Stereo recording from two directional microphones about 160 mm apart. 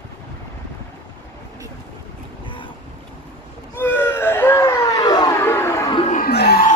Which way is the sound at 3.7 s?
15° left (ahead or behind).